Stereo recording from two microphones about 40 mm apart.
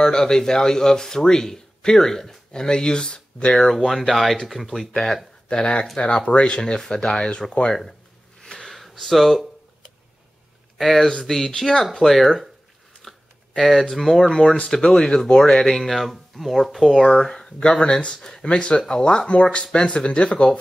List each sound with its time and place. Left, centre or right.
0.0 s speech: centre
3.4 s speech: centre
5.5 s speech: left
8.4 s a sound: centre
10.8 s speech: centre
13.6 s speech: centre
14.2 s speech: centre
15.7 s speech: centre; by 20.5 s left